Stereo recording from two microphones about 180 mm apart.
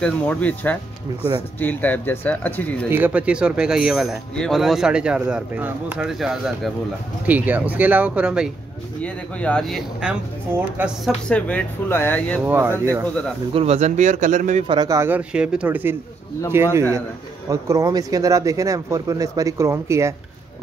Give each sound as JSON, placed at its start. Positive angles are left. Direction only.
{"t": 0.0, "sound": "speech", "side_deg": 5}
{"t": 2.9, "sound": "speech", "side_deg": -10}
{"t": 9.0, "sound": "speech", "side_deg": 5}
{"t": 11.2, "sound": "speech", "side_deg": 5}
{"t": 12.4, "sound": "speech", "side_deg": -10}
{"t": 13.0, "sound": "speech", "side_deg": 5}
{"t": 13.5, "sound": "speech", "side_deg": -35}
{"t": 14.7, "sound": "speech", "side_deg": -20}